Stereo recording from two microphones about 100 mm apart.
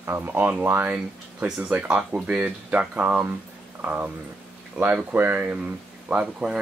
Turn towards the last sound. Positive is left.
turn(degrees=-10)  # may be behind; listen again after turning